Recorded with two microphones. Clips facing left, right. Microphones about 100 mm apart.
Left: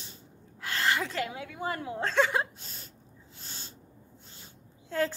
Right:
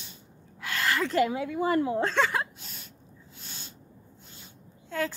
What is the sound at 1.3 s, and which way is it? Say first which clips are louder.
Speech: right 8 dB; 35° right (ahead or behind).